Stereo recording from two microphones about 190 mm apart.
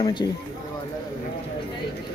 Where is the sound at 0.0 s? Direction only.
20° left (ahead or behind).